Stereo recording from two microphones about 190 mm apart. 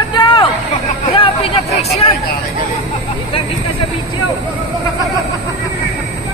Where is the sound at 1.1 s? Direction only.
30° left (ahead or behind).